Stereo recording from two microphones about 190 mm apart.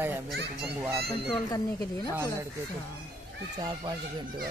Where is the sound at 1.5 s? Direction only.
20° left (ahead or behind).